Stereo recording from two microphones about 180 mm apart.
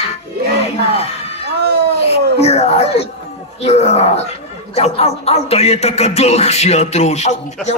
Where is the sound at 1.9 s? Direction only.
35° left (ahead or behind).